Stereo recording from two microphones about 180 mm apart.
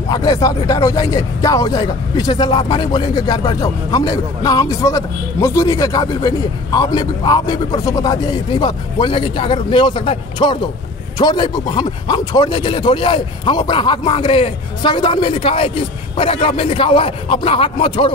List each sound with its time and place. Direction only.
0.1 s speech: 20° left (ahead or behind)